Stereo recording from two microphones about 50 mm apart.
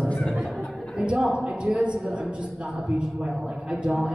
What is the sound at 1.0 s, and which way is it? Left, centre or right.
A man's voice, centre.